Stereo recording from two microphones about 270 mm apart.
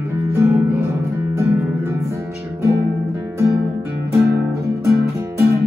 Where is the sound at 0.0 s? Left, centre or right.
Centre.